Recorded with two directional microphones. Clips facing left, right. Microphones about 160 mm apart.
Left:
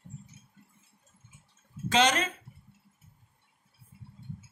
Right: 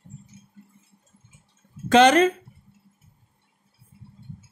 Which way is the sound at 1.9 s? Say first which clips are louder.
Right 10 dB; 60° right (ahead or behind).